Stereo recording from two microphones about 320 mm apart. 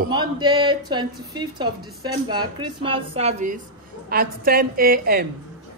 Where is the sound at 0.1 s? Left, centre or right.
Centre.